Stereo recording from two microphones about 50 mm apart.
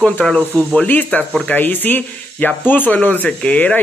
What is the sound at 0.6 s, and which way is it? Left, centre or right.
Speech, left.